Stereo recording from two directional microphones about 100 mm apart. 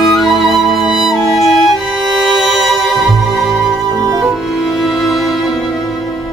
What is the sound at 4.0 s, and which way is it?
Music, 40° right (ahead or behind).